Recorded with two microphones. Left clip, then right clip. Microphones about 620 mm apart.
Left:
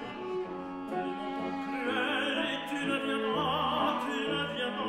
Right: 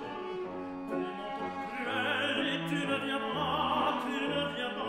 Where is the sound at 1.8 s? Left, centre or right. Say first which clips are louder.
Even; centre.